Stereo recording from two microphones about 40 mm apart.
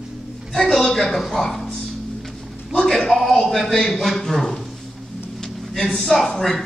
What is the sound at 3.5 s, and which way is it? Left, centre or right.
Speech, centre.